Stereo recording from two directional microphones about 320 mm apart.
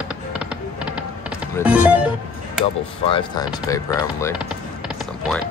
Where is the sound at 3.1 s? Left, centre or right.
Centre.